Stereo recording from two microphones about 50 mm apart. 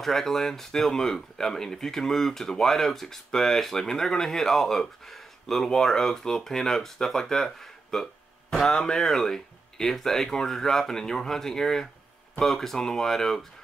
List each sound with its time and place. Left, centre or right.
0.0 s speech: centre